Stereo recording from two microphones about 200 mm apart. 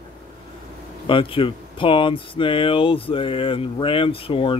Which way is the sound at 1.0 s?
25° left (ahead or behind).